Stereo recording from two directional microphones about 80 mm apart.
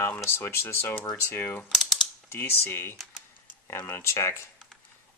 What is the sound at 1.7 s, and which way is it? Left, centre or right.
Mechanisms, centre.